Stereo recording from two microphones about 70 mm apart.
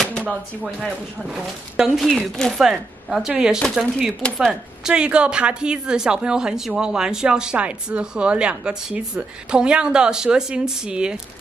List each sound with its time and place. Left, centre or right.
0.7 s speech: centre
2.0 s speech: centre
2.5 s speech: centre